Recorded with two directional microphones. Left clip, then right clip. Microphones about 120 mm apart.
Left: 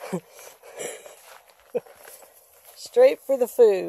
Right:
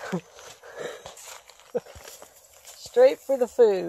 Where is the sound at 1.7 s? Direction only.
20° left (ahead or behind).